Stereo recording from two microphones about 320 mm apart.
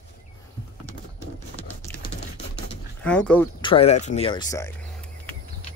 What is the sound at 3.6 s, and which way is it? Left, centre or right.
Speech, centre.